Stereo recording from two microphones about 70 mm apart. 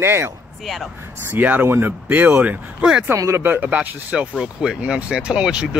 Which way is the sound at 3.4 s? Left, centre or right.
Right.